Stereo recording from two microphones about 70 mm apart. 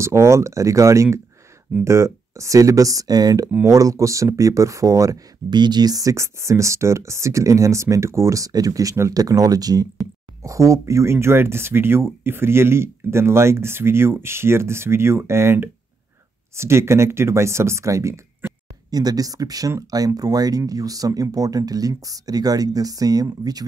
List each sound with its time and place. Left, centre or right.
0.0 s speech: right
3.6 s speech: right
5.5 s speech: right
10.4 s speech: right
18.4 s a sound: right
18.9 s speech: right